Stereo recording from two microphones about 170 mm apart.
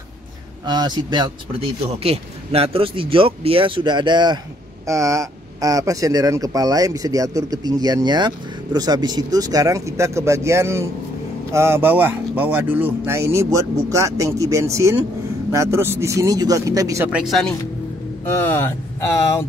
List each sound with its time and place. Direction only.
0.7 s speech: 25° right (ahead or behind)
17.1 s speech: centre (ahead or behind)
18.2 s speech: 15° left (ahead or behind)